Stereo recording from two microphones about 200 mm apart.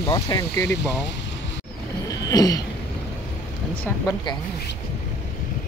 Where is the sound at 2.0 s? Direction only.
20° left (ahead or behind).